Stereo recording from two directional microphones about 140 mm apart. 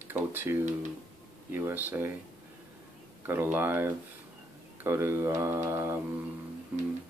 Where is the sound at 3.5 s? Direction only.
15° right (ahead or behind).